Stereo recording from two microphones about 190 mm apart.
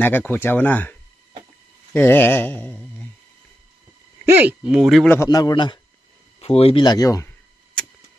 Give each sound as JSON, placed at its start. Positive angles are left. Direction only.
{"t": 0.0, "sound": "speech", "side_deg": 10}
{"t": 2.0, "sound": "speech", "side_deg": 10}
{"t": 4.3, "sound": "speech", "side_deg": -10}
{"t": 5.2, "sound": "speech", "side_deg": 20}